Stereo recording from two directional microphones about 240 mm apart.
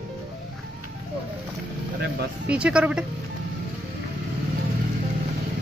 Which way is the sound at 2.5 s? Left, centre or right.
Centre.